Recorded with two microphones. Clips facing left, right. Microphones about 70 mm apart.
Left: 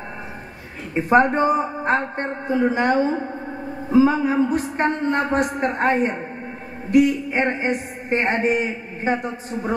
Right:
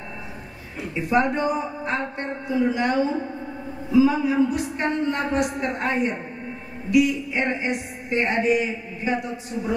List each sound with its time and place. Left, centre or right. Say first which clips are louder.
0.9 s a man's voice: left 5 dB; left